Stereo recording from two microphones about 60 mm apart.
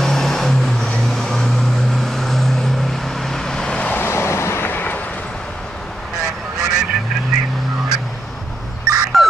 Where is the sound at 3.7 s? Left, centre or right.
Left.